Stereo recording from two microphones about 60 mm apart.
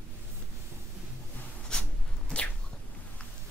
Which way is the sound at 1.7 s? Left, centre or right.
Centre.